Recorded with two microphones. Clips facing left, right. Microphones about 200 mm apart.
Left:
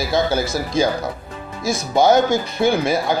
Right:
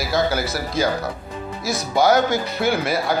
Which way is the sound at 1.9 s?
20° left (ahead or behind).